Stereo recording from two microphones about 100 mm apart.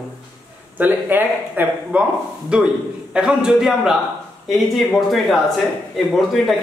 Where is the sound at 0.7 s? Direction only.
20° right (ahead or behind).